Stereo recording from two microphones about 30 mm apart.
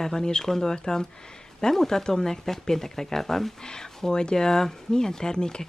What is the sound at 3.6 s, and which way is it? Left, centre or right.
Speech, left.